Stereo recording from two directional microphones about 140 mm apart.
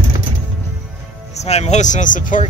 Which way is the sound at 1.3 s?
50° left (ahead or behind).